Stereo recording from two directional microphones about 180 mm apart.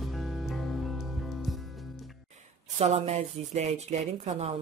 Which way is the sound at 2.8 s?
35° right (ahead or behind).